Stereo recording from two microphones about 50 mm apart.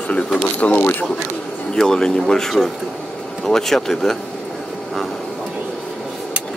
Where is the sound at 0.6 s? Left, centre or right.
Left.